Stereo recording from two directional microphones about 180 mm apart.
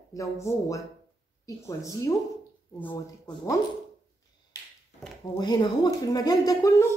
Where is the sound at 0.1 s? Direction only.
15° left (ahead or behind).